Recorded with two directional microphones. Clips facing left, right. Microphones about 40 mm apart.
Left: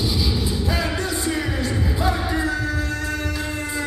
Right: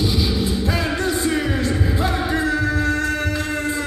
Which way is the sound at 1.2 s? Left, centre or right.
Right.